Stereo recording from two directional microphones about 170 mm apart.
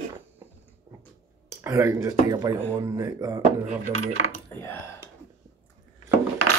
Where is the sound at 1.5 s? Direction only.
15° right (ahead or behind).